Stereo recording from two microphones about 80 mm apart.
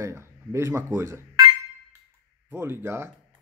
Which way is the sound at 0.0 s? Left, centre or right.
Right.